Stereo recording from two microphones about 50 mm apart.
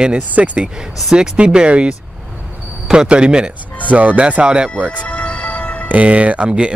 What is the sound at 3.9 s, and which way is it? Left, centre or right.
Speech, right.